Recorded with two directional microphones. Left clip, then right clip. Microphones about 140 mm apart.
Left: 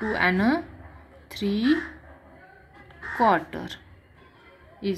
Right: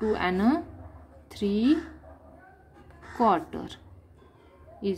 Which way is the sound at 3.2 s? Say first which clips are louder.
Left 2 dB; 15° left (ahead or behind).